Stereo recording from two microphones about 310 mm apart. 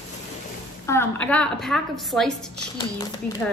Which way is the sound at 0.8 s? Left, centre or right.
Centre.